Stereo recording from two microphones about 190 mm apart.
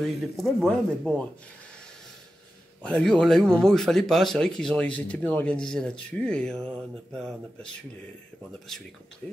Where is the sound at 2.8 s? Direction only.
5° left (ahead or behind).